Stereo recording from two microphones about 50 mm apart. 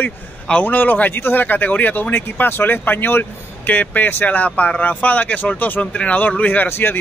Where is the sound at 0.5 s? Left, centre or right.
Left.